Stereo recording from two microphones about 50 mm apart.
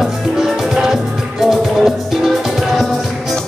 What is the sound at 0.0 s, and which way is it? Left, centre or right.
Music, centre.